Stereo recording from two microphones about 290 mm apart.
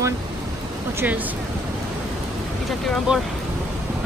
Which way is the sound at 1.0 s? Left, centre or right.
Centre.